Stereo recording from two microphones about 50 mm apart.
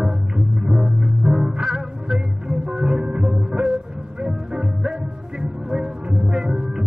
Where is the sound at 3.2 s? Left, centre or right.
Centre.